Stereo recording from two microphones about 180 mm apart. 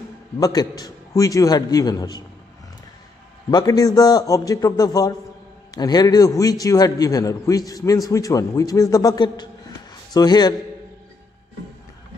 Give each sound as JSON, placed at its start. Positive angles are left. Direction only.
{"t": 0.4, "sound": "a man's voice", "side_deg": 20}
{"t": 3.4, "sound": "a man's voice", "side_deg": 20}